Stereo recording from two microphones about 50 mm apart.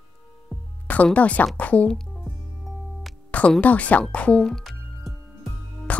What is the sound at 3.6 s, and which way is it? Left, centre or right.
Speech, left.